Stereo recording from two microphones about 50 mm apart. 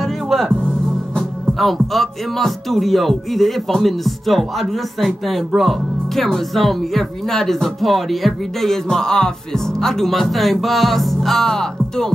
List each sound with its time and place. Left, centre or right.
0.0 s music: centre
1.1 s speech: centre